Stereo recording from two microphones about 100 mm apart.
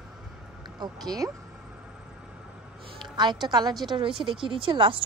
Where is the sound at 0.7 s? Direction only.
40° right (ahead or behind).